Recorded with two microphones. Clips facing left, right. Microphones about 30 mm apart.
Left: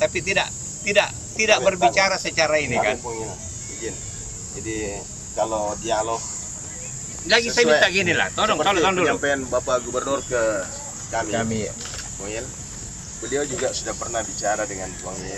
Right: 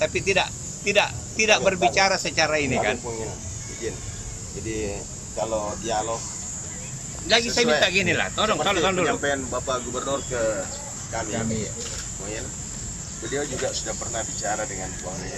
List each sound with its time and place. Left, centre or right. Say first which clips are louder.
0.0 s speech: left 1 dB; centre
5.9 s speech: left 3 dB; left
7.2 s speech: left 3 dB; centre
10.3 s speech: left 5 dB; centre
11.4 s speech: left 3 dB; left
13.2 s speech: left 4 dB; centre
13.6 s speech: left 3 dB; centre